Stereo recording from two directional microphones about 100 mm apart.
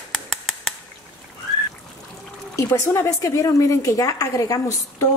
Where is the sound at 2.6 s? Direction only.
25° left (ahead or behind).